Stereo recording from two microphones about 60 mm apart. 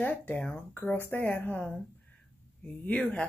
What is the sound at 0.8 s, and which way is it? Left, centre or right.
Speech, left.